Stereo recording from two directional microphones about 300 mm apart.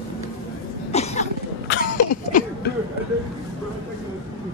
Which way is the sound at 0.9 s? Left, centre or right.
Left.